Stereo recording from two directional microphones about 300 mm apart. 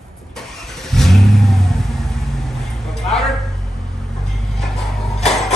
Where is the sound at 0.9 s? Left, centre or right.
Centre.